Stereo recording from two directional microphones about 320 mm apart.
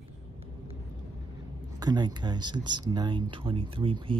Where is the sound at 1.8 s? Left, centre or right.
Centre.